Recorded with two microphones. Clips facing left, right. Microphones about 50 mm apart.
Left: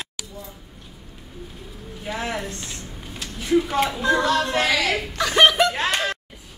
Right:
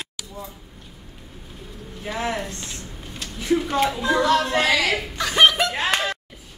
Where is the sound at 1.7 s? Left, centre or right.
Centre.